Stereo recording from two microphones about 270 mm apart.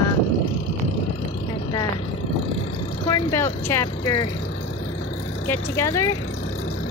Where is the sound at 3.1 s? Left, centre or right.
Centre.